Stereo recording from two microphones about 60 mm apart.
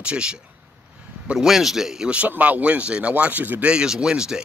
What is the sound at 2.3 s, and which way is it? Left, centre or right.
A man's voice, right.